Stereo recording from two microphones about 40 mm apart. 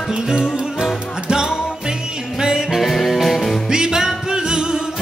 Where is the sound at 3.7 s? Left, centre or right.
Centre.